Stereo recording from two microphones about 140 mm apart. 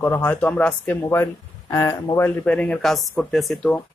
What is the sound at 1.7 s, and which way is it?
Speech, 20° left (ahead or behind).